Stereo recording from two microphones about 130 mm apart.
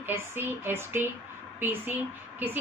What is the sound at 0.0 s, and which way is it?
A woman's voice, 15° right (ahead or behind).